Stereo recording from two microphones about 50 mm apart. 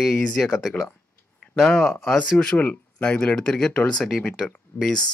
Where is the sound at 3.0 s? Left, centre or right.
Centre.